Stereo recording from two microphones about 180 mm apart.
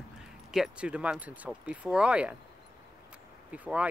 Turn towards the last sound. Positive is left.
turn(degrees=-10)  # may be behind; listen again after turning